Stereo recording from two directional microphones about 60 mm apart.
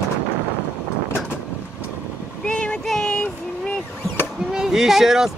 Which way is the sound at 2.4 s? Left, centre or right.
Centre.